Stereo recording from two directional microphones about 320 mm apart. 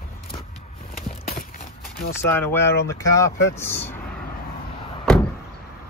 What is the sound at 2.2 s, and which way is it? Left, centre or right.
Speech, centre.